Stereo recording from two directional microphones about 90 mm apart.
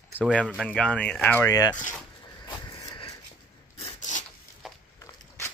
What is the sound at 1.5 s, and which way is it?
Speech, 45° left (ahead or behind).